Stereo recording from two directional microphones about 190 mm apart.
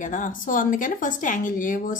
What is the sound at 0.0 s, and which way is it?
Speech, 45° left (ahead or behind).